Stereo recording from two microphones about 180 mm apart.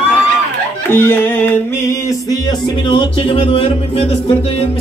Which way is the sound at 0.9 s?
10° left (ahead or behind).